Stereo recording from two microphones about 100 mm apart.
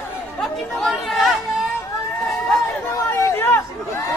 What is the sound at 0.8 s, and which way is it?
Chatter, centre (ahead or behind).